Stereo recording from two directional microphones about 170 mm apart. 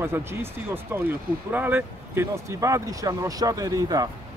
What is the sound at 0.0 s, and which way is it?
Speech, 15° right (ahead or behind).